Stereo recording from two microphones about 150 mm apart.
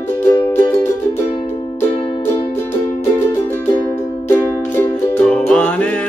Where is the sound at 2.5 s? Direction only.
15° left (ahead or behind).